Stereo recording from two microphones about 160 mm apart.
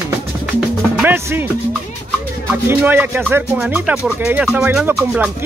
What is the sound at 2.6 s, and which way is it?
Speech, 10° right (ahead or behind).